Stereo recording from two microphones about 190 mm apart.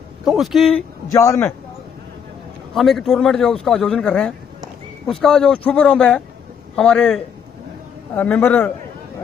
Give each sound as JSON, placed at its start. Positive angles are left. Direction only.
{"t": 0.2, "sound": "a man's voice", "side_deg": 0}
{"t": 1.1, "sound": "a man's voice", "side_deg": 15}
{"t": 2.7, "sound": "a man's voice", "side_deg": 0}
{"t": 8.2, "sound": "a man's voice", "side_deg": 10}